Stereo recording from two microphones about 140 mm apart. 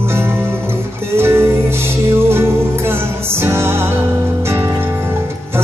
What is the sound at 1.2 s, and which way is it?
Music, 20° right (ahead or behind).